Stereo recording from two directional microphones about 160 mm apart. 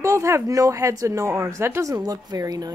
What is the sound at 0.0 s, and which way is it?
Speech, 20° right (ahead or behind).